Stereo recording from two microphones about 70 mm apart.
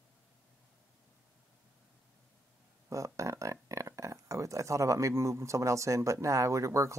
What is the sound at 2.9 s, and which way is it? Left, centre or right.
Speech, right.